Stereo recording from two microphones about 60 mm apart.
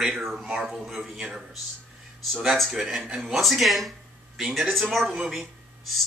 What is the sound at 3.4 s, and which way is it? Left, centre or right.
Speech, centre.